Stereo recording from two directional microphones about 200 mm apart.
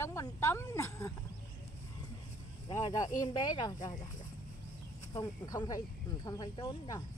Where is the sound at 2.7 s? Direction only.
15° left (ahead or behind).